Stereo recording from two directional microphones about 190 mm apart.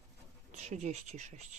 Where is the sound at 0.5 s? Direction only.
35° right (ahead or behind).